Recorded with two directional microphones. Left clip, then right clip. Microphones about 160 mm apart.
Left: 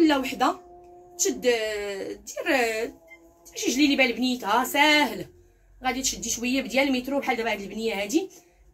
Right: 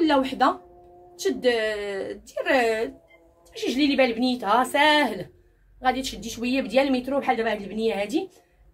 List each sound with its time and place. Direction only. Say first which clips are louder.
0.0 s a woman's voice: right 1 dB; 35° right (ahead or behind)
3.5 s a woman's voice: even; 30° right (ahead or behind)